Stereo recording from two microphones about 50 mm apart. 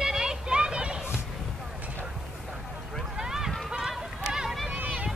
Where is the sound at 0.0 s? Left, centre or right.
Centre.